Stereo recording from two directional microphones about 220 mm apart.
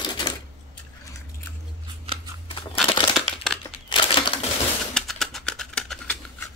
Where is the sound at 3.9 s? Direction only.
25° left (ahead or behind).